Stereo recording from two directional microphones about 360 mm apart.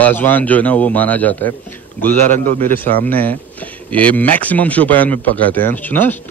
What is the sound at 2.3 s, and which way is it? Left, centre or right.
Speech, right.